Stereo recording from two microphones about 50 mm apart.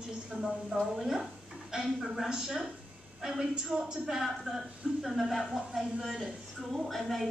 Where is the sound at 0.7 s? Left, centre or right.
Centre.